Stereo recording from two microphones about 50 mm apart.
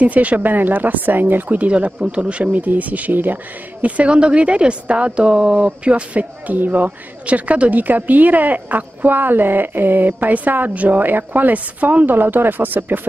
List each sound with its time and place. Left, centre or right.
0.0 s a woman's voice: right
1.7 s a woman's voice: right